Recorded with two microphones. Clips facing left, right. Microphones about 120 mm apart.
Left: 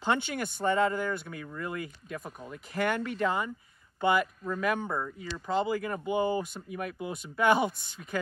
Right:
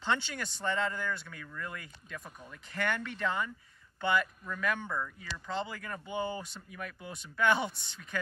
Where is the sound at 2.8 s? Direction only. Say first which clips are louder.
Left 5 dB; 40° left (ahead or behind).